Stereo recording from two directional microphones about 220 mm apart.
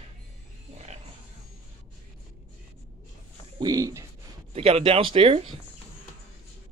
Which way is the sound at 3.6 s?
15° right (ahead or behind).